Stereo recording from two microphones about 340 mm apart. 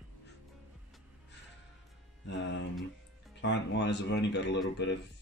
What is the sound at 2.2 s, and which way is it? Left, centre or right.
Speech, left.